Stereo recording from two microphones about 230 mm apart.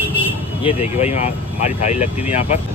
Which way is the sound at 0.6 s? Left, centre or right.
Left.